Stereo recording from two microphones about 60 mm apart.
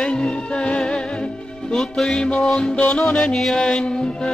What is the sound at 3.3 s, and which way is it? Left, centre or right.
Music, centre.